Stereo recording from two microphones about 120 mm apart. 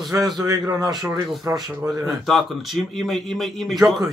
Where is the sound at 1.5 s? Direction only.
25° right (ahead or behind).